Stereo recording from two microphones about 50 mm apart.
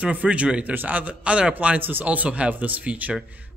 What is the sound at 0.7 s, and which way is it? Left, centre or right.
A man's voice, right.